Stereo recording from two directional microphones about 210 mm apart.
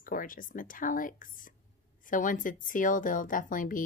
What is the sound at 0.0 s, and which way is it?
Speech, 40° left (ahead or behind).